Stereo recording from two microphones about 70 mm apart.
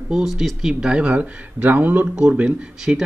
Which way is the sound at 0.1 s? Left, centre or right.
Centre.